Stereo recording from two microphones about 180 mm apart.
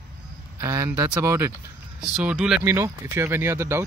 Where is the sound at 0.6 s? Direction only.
15° right (ahead or behind).